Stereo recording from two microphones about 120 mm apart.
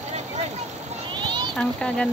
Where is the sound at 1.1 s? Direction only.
40° right (ahead or behind).